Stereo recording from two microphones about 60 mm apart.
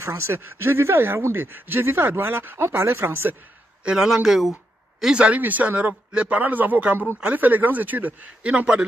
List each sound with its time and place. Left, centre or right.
0.0 s speech: right
3.8 s a man's voice: centre
5.0 s a man's voice: centre
5.4 s a man's voice: right